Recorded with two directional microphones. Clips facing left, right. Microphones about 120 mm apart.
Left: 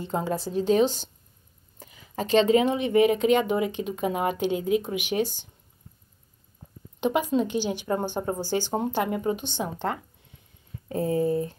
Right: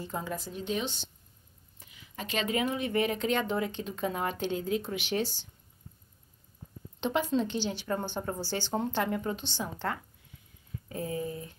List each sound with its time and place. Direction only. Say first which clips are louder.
0.0 s a woman's voice: left 8 dB; 30° left (ahead or behind)
7.0 s speech: left 5 dB; 15° left (ahead or behind)
10.9 s a woman's voice: left 10 dB; 35° left (ahead or behind)